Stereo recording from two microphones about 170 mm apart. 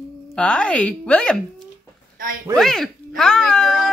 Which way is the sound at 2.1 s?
55° right (ahead or behind).